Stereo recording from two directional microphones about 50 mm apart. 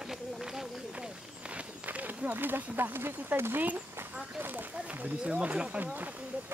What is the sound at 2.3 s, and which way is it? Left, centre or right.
Speech, right.